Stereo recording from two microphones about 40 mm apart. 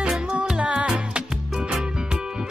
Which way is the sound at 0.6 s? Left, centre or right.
Right.